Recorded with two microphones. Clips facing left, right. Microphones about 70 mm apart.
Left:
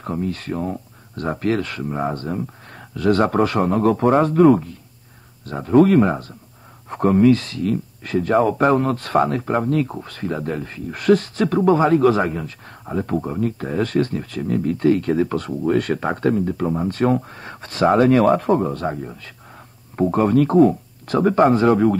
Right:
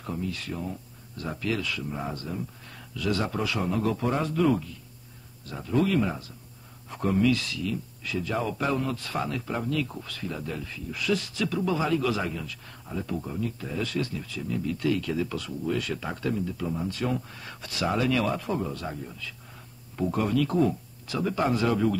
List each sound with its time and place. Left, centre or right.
0.0 s speech: left